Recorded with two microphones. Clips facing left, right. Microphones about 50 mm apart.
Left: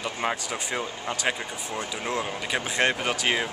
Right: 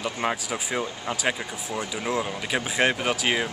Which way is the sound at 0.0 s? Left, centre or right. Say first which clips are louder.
Right 1 dB; centre.